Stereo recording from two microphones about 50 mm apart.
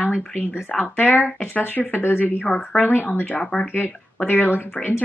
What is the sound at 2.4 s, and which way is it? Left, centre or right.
A woman's voice, left.